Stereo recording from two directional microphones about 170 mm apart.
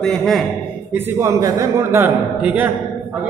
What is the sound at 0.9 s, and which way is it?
A man's voice, 15° right (ahead or behind).